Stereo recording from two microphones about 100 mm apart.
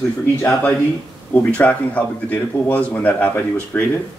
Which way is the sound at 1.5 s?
15° left (ahead or behind).